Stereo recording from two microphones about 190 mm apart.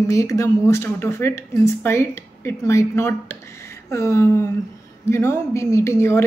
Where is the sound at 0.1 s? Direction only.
15° left (ahead or behind).